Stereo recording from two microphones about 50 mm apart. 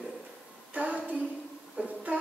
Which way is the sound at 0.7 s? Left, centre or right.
Right.